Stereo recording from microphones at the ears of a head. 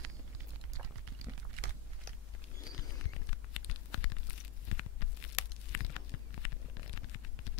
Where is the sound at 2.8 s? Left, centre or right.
Left.